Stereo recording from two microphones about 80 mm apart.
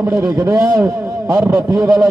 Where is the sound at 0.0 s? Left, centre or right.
Right.